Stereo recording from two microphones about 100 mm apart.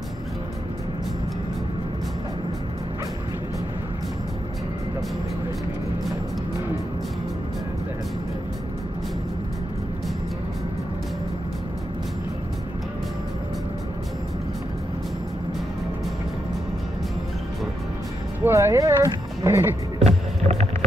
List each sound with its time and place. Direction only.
18.4 s speech: 25° right (ahead or behind)
20.1 s rowboat: 90° right